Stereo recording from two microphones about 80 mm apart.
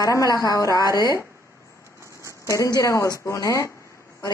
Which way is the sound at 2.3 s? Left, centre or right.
Left.